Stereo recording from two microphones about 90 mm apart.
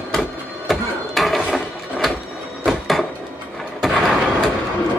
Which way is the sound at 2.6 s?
Centre (ahead or behind).